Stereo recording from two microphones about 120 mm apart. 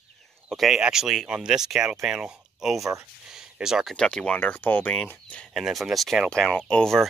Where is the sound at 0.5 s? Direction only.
Centre (ahead or behind); by 5.4 s 15° left (ahead or behind).